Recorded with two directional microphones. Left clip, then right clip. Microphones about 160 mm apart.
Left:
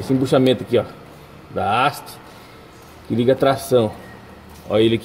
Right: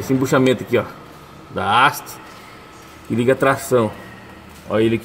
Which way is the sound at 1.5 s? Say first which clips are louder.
Right 3 dB; 20° right (ahead or behind).